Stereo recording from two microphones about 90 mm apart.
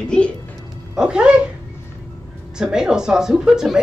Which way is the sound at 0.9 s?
10° right (ahead or behind).